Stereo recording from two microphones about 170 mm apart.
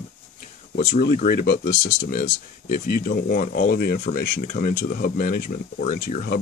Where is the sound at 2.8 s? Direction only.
65° left (ahead or behind).